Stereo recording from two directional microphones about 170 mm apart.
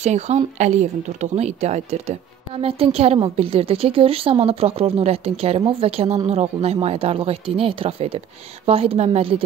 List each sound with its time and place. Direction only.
0.0 s a woman's voice: 40° right (ahead or behind)